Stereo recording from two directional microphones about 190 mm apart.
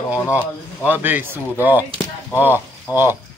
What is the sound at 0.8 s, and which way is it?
Speech, 10° right (ahead or behind).